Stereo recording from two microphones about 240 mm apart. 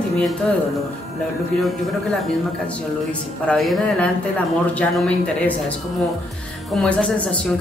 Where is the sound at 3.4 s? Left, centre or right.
Centre.